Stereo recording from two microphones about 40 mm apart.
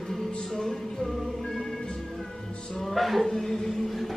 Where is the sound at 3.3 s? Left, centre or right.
Centre.